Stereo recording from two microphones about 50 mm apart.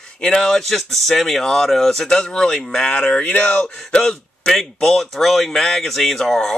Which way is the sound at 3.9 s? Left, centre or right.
Centre.